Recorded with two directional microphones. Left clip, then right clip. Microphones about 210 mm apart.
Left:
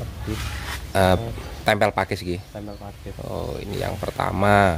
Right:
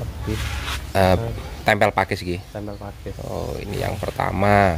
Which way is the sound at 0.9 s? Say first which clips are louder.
Right 1 dB; 10° left (ahead or behind).